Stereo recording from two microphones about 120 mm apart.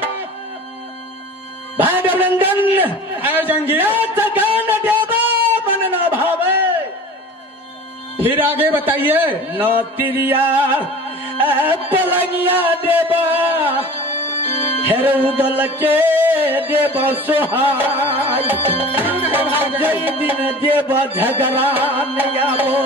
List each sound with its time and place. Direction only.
1.8 s speech: 15° right (ahead or behind)
4.6 s a sound: 15° right (ahead or behind)
8.2 s speech: 15° right (ahead or behind)
11.9 s speech: 15° right (ahead or behind)
14.9 s speech: 15° right (ahead or behind)